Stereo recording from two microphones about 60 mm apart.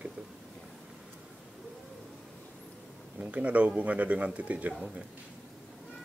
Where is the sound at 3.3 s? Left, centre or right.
Right.